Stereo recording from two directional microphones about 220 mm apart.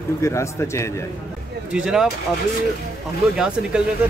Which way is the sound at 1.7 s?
5° right (ahead or behind).